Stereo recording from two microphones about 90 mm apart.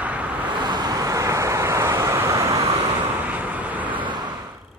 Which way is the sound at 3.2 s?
20° right (ahead or behind).